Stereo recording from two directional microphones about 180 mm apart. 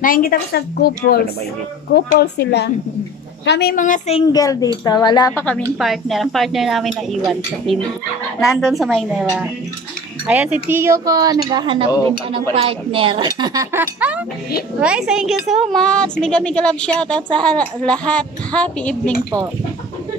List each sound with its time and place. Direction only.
0.0 s a woman's voice: 50° left (ahead or behind); by 3.7 s 70° left (ahead or behind)
3.7 s a woman's voice: 45° left (ahead or behind)
4.3 s speech: 20° left (ahead or behind)
5.4 s a woman's voice: 10° left (ahead or behind)